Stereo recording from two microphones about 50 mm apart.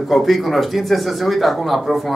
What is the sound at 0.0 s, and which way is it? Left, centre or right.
Speech, centre.